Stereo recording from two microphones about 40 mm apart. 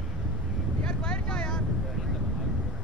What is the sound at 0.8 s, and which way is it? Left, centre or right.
Vehicle, centre.